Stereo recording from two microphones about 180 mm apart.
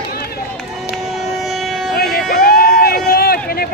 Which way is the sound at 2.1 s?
55° left (ahead or behind).